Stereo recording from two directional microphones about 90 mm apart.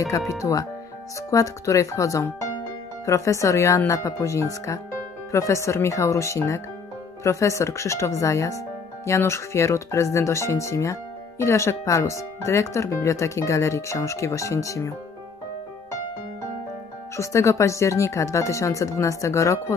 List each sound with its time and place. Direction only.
0.3 s speech: 35° left (ahead or behind)
17.2 s speech: 35° left (ahead or behind)